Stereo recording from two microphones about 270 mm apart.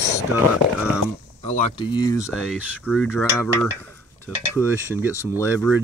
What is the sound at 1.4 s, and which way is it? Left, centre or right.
Speech, left.